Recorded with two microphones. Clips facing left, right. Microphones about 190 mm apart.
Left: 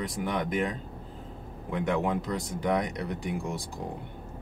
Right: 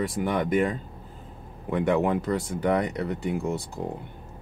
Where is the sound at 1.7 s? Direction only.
60° right (ahead or behind).